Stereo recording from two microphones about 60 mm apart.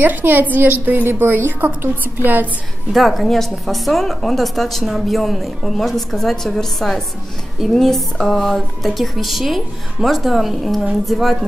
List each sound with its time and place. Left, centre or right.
0.0 s a woman's voice: right
2.9 s speech: centre